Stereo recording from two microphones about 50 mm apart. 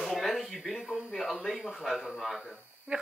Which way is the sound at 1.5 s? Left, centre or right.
Right.